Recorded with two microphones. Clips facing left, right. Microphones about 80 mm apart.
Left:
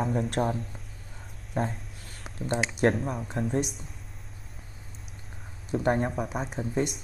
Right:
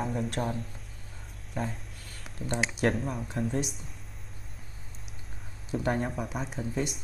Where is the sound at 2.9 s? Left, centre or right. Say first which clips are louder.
Left 2 dB; centre.